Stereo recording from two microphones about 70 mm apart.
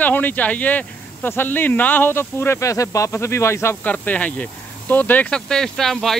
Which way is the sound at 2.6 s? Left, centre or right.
Left.